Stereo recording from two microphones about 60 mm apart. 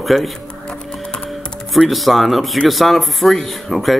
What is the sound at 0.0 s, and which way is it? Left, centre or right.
Speech, centre.